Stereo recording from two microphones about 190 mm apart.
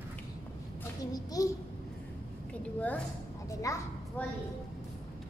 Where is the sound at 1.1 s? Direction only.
20° left (ahead or behind).